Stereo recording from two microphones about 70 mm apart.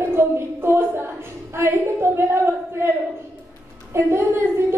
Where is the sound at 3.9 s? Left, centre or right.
Right.